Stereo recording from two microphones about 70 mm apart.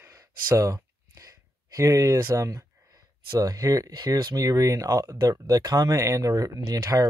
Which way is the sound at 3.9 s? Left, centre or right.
Right.